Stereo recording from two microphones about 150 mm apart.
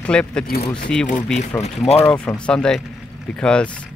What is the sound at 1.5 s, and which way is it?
Speech, 15° left (ahead or behind).